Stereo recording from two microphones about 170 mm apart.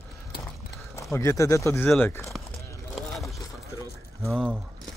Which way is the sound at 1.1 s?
20° left (ahead or behind).